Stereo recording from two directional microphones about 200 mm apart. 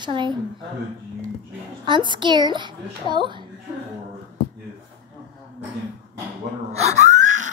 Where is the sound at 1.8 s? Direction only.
25° right (ahead or behind).